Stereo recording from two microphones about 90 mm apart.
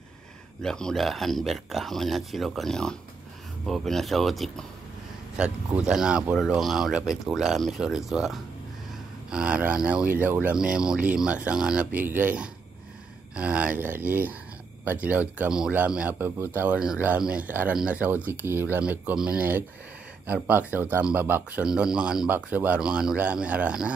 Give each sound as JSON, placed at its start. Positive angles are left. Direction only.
{"t": 0.6, "sound": "speech", "side_deg": 5}
{"t": 10.0, "sound": "a man's voice", "side_deg": -20}
{"t": 10.5, "sound": "a man's voice", "side_deg": -10}
{"t": 22.3, "sound": "speech", "side_deg": -20}